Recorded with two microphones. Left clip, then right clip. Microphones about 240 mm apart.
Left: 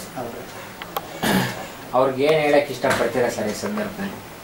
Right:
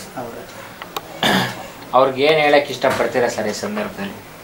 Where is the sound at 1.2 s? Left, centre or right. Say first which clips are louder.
Right 5 dB; right.